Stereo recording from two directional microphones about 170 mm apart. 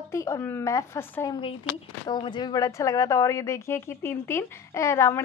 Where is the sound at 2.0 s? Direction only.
25° left (ahead or behind).